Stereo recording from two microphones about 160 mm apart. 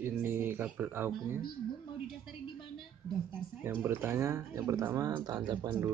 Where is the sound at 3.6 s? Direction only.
15° right (ahead or behind).